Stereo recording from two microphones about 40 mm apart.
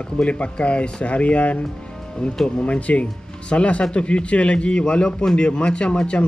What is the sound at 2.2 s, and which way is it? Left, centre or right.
Speech, centre.